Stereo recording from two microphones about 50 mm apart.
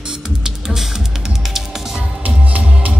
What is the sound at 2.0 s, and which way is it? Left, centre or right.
Music, right.